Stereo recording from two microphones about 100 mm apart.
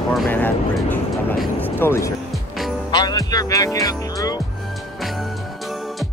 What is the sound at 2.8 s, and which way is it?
Speech, 45° left (ahead or behind).